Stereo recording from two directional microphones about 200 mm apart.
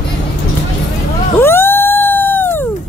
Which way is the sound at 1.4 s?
10° left (ahead or behind).